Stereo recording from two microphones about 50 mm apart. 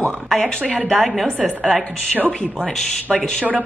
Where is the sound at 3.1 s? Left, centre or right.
Centre.